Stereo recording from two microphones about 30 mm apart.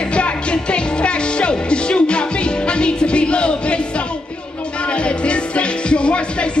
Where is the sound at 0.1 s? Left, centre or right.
Left.